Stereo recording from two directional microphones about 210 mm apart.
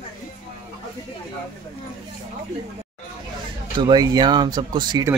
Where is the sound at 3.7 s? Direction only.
20° right (ahead or behind).